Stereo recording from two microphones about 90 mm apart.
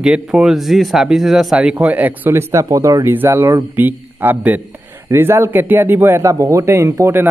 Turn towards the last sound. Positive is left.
turn(degrees=-30)  # may be behind; listen again after turning